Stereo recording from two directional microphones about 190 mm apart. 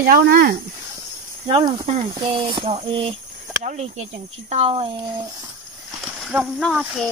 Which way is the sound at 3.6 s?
35° right (ahead or behind).